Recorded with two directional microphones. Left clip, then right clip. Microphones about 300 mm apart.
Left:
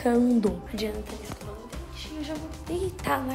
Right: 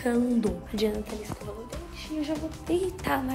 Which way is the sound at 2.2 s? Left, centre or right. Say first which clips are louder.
Right 4 dB; centre.